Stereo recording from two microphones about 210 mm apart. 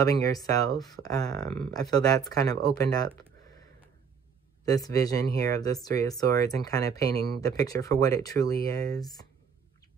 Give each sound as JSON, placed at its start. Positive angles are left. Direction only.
{"t": 0.0, "sound": "speech", "side_deg": 15}
{"t": 4.6, "sound": "speech", "side_deg": 15}